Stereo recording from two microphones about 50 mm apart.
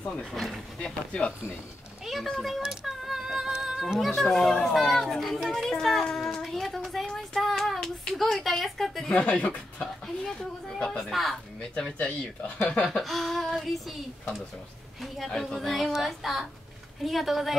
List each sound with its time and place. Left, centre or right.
0.3 s speech: centre
0.7 s speech: centre
2.0 s speech: centre
2.6 s a sound: centre
4.6 s speech: centre
6.9 s a sound: centre
9.1 s speech: left
10.0 s speech: centre
11.1 s speech: centre
12.0 s speech: left
12.8 s speech: centre
15.0 s speech: centre